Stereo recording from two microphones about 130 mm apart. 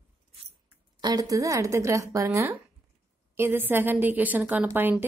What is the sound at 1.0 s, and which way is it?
A woman's voice, 30° right (ahead or behind).